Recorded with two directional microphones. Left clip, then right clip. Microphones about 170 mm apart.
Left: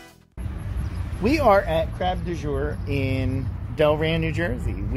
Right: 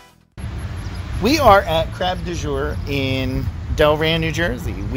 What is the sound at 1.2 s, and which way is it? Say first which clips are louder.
Speech: right 6 dB; 20° right (ahead or behind).